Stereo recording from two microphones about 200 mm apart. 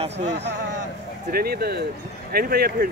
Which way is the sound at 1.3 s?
50° right (ahead or behind).